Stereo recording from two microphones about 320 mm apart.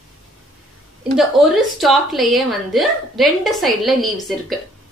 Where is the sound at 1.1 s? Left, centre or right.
Centre.